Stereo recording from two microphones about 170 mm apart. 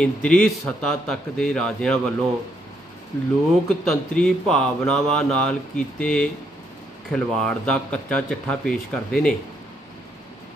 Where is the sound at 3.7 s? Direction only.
5° left (ahead or behind).